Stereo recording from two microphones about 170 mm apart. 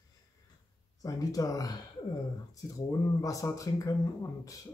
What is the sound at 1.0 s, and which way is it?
Speech, 20° left (ahead or behind).